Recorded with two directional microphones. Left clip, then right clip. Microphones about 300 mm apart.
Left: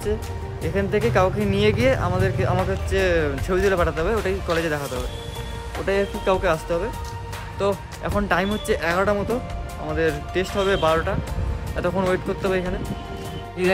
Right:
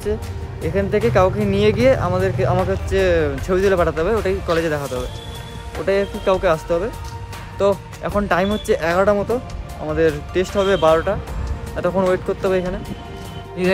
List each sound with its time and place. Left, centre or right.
0.6 s speech: centre